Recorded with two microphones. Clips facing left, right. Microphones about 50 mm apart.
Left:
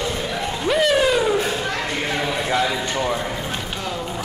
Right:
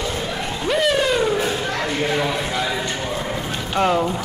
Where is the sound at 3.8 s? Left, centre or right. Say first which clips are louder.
Right 10 dB; right.